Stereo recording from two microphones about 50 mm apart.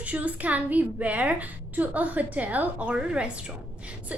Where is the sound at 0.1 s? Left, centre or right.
Right.